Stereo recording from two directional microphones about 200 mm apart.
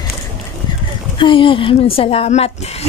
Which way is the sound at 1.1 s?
25° left (ahead or behind).